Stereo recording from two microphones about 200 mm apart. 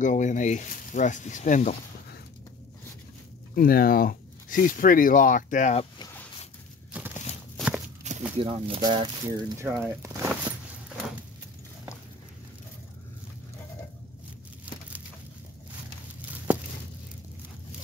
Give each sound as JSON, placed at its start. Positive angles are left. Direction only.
{"t": 0.0, "sound": "speech", "side_deg": 40}
{"t": 3.5, "sound": "speech", "side_deg": 45}
{"t": 5.9, "sound": "a sound", "side_deg": 15}
{"t": 6.9, "sound": "horse", "side_deg": -5}
{"t": 7.5, "sound": "walk", "side_deg": -5}
{"t": 8.1, "sound": "snake", "side_deg": -35}
{"t": 8.4, "sound": "speech", "side_deg": -30}
{"t": 10.0, "sound": "a sound", "side_deg": -15}